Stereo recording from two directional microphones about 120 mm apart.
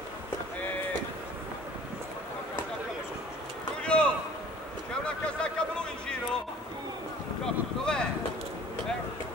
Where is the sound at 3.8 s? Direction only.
10° left (ahead or behind).